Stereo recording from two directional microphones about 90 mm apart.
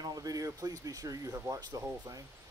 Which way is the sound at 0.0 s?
45° right (ahead or behind).